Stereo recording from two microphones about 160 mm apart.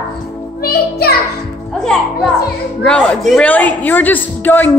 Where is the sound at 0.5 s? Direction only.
75° left (ahead or behind).